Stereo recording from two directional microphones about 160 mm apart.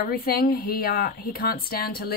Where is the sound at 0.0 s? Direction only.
65° left (ahead or behind).